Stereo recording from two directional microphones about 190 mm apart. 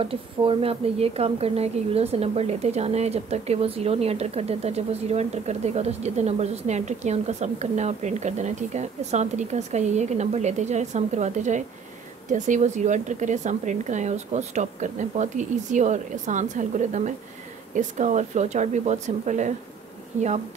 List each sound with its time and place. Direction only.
0.0 s a woman's voice: 30° right (ahead or behind)